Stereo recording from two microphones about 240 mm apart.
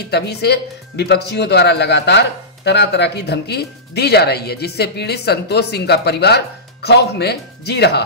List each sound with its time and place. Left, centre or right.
0.1 s speech: left